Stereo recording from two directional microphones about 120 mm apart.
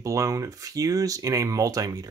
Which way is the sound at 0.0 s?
25° right (ahead or behind).